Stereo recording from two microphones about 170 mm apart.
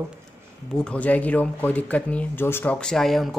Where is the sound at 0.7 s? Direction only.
5° left (ahead or behind).